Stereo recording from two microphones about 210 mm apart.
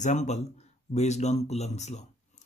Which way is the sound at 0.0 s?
35° left (ahead or behind).